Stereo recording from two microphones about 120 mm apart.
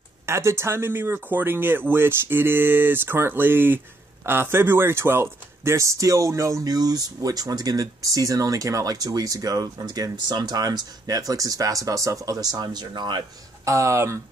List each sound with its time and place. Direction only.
0.3 s speech: 25° right (ahead or behind)
13.7 s speech: 25° right (ahead or behind)